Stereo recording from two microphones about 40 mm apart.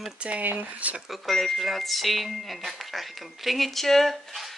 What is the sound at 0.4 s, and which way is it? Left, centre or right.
Speech, right.